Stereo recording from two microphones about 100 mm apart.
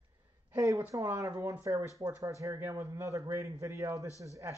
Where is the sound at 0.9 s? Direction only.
30° right (ahead or behind).